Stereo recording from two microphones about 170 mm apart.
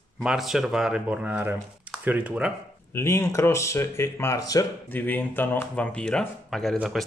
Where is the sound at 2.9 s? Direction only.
15° left (ahead or behind).